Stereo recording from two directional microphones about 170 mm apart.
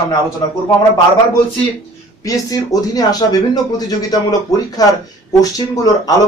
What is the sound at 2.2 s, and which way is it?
Speech, 20° left (ahead or behind).